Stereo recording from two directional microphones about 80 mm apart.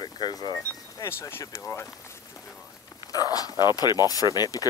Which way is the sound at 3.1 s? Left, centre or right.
Left.